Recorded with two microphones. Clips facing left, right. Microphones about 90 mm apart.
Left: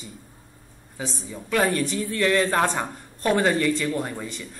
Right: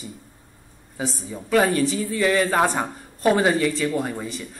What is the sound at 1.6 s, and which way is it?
Speech, 5° right (ahead or behind).